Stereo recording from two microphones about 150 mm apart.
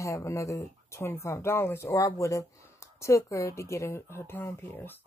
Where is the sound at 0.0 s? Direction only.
20° left (ahead or behind).